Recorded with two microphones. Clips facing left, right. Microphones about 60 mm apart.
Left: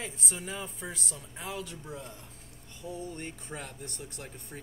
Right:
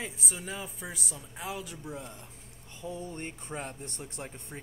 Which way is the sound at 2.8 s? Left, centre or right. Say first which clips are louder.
Right 1 dB; right.